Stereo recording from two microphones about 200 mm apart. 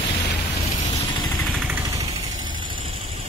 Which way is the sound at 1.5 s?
5° right (ahead or behind).